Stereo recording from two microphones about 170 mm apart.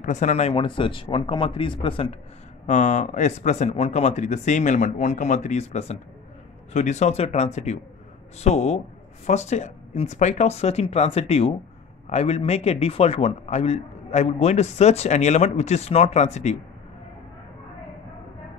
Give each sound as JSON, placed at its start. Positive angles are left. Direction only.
{"t": 0.0, "sound": "a man's voice", "side_deg": 45}
{"t": 2.6, "sound": "a man's voice", "side_deg": 45}